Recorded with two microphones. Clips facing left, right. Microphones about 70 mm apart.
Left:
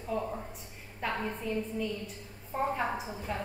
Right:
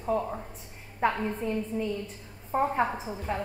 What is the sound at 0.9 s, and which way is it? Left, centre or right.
A woman's voice, right.